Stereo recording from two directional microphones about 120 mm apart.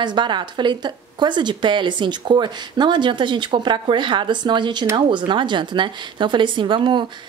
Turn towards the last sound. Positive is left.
turn(degrees=-40)  # may be behind; listen again after turning